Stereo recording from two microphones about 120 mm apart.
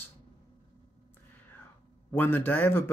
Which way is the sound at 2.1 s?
15° left (ahead or behind).